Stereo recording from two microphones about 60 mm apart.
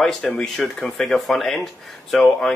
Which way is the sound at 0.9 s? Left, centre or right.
Centre.